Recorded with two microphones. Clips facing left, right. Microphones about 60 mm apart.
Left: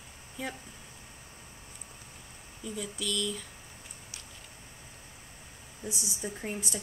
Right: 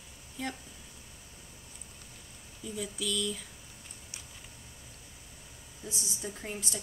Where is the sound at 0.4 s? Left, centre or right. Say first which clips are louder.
Even; centre.